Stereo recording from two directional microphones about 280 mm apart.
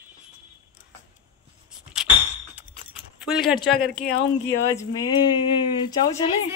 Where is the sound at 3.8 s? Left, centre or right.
Left.